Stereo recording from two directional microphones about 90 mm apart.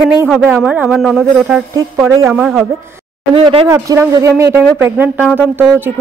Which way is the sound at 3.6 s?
35° right (ahead or behind).